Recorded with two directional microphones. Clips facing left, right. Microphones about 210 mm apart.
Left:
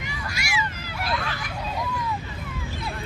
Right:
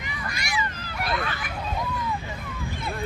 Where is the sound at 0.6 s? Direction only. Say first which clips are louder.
Left 1 dB; 10° left (ahead or behind).